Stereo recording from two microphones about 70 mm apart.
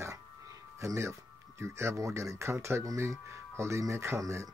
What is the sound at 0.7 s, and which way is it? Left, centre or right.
Speech, right.